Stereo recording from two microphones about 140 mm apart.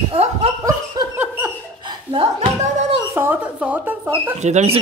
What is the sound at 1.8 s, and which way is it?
Hiccup, 35° right (ahead or behind).